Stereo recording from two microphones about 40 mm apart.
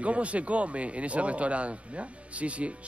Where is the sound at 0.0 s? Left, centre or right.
Right.